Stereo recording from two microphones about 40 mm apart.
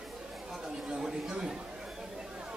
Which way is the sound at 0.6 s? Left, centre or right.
Centre.